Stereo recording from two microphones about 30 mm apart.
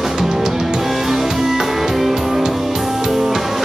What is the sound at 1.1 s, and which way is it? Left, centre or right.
Music, centre.